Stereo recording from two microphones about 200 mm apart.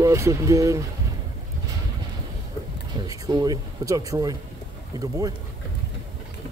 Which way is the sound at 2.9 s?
20° right (ahead or behind).